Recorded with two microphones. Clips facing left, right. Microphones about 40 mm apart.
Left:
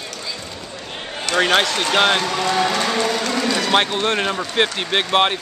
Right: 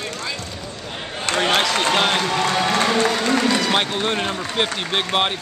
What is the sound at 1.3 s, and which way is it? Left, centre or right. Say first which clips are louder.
Run: left 3 dB; right.